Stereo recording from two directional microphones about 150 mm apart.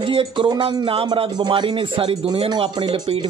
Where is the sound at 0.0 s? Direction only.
35° right (ahead or behind).